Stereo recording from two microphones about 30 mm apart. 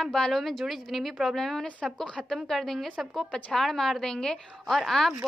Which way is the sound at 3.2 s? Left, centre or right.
Left.